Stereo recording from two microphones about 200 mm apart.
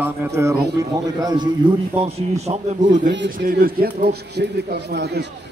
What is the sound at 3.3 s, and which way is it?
A man's voice, 45° right (ahead or behind).